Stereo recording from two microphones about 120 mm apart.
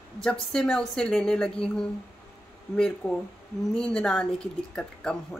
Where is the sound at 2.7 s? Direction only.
10° left (ahead or behind).